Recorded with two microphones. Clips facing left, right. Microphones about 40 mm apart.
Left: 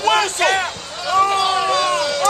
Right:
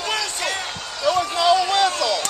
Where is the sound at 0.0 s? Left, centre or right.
Left.